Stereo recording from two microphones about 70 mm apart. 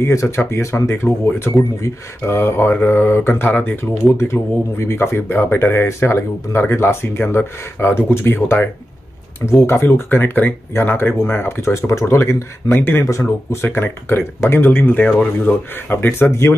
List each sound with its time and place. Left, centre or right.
0.0 s speech: left
12.6 s speech: left
13.1 s speech: left